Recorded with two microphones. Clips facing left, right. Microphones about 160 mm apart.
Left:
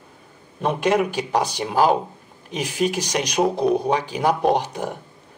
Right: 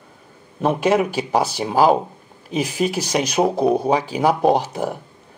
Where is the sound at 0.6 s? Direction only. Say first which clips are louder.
Right 2 dB; 10° right (ahead or behind).